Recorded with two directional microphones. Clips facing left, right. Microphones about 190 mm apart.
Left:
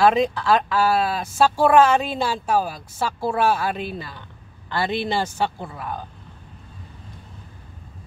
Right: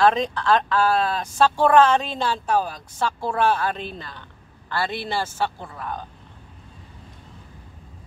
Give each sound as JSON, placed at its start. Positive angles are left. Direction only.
{"t": 0.0, "sound": "speech", "side_deg": 10}